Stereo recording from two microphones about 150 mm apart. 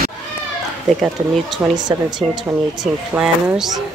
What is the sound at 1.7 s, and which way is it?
Speech, 25° right (ahead or behind).